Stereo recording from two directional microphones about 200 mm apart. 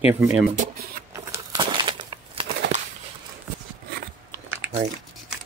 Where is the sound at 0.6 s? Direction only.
50° right (ahead or behind).